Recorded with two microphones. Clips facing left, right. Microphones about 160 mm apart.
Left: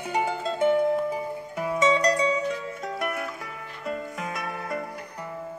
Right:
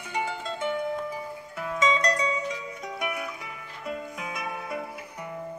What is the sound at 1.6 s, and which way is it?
Music, 10° left (ahead or behind).